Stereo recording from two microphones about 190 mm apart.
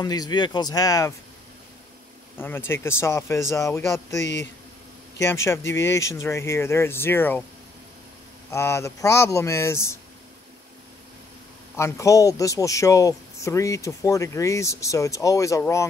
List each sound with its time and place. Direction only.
0.0 s speech: 20° left (ahead or behind)
2.3 s speech: 10° left (ahead or behind)
5.2 s speech: 15° left (ahead or behind)
8.5 s speech: 15° left (ahead or behind)
11.7 s speech: 15° left (ahead or behind)